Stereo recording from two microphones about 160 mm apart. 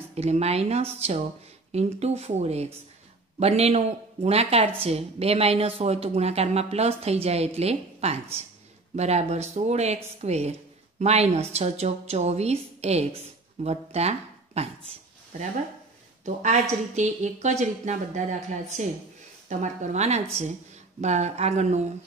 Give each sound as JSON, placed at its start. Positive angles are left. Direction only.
{"t": 0.1, "sound": "a woman's voice", "side_deg": -40}